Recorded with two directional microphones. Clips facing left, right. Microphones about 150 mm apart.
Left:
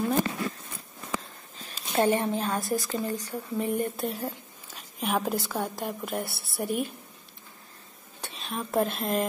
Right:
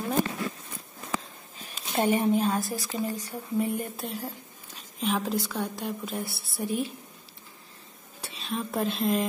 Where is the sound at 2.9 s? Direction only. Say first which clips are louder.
Left 1 dB; 10° right (ahead or behind).